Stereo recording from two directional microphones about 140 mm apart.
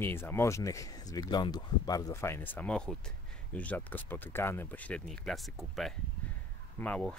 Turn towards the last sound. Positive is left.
turn(degrees=10)  # may be behind; listen again after turning